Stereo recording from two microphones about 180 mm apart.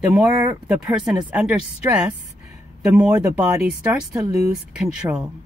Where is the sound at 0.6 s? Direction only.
5° right (ahead or behind).